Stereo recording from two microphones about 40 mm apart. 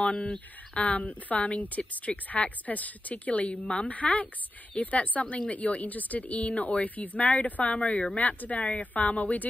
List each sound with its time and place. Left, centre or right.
0.0 s speech: left